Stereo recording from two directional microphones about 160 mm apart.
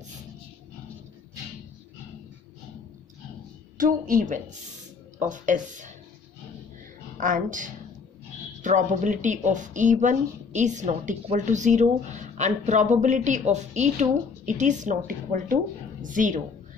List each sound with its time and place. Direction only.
3.8 s a woman's voice: 60° right (ahead or behind)
7.2 s speech: 55° right (ahead or behind)